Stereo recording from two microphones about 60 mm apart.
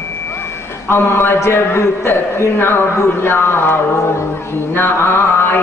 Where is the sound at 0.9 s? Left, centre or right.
Left.